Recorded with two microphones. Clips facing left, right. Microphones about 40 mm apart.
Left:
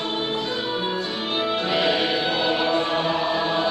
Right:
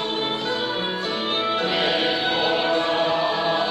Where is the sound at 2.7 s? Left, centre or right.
Right.